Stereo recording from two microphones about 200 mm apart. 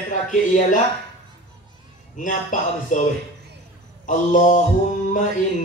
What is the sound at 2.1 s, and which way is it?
Speech, 40° left (ahead or behind).